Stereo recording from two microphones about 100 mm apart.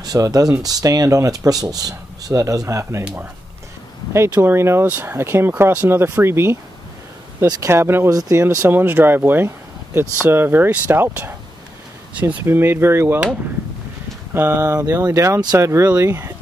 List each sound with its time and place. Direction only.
0.0 s speech: 40° right (ahead or behind)
4.1 s speech: 25° right (ahead or behind)
7.6 s speech: 25° right (ahead or behind)
8.1 s speech: 35° right (ahead or behind)
14.3 s speech: 25° right (ahead or behind)